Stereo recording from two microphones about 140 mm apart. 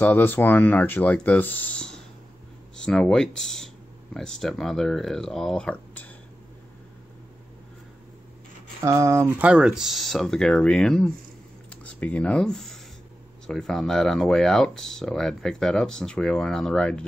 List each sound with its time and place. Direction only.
0.0 s speech: 15° left (ahead or behind)
8.8 s speech: 20° right (ahead or behind)
9.4 s speech: 5° right (ahead or behind)